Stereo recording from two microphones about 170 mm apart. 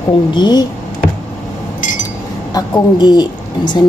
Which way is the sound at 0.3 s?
25° left (ahead or behind).